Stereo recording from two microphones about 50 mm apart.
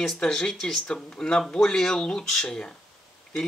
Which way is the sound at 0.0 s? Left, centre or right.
Centre.